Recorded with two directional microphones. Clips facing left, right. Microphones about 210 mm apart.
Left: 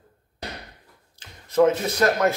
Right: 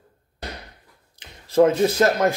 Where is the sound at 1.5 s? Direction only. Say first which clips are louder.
Right 3 dB; 30° right (ahead or behind).